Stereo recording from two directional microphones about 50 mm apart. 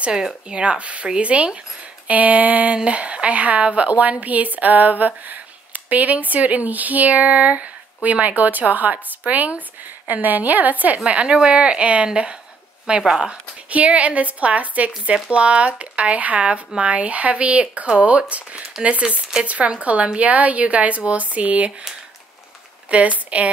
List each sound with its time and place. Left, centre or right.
0.5 s a woman's voice: right
13.3 s speech: right
22.8 s speech: right